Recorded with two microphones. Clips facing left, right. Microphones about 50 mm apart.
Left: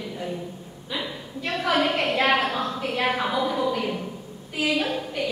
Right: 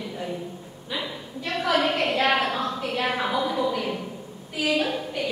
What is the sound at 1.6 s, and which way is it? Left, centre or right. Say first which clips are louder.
A woman's voice: even; centre.